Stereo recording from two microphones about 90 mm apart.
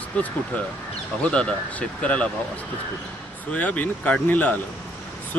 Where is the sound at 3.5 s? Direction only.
20° left (ahead or behind).